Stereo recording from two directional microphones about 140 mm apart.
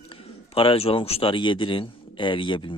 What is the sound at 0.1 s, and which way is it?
Speech, 40° left (ahead or behind).